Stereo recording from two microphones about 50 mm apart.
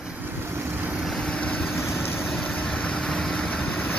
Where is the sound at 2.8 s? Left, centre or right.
Centre.